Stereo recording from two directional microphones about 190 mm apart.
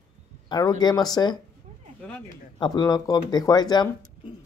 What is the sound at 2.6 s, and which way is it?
Speech, 20° left (ahead or behind).